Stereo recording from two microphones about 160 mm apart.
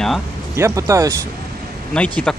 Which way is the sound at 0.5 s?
20° right (ahead or behind).